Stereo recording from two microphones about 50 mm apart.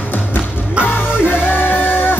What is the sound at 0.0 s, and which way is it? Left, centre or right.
Music, left.